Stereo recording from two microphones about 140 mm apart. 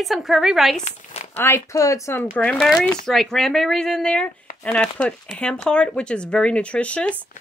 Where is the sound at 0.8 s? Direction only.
55° left (ahead or behind).